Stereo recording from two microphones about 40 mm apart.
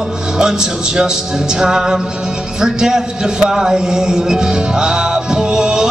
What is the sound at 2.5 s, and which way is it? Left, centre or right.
A man's voice, centre.